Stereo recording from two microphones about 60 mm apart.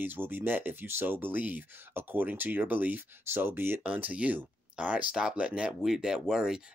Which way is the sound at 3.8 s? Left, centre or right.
Right.